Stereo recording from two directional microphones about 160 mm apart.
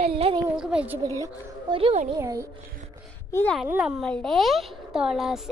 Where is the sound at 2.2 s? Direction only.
20° right (ahead or behind).